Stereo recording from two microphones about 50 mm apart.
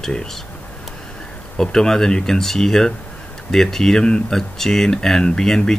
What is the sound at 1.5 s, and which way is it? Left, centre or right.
Speech, centre.